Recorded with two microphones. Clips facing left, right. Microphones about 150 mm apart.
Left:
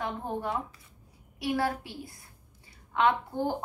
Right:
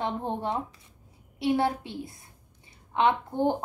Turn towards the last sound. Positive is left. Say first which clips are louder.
# right 3 dB
turn(degrees=-20)  # may be behind; listen again after turning